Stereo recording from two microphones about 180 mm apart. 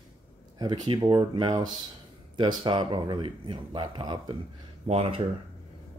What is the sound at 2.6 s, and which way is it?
Speech, 25° right (ahead or behind).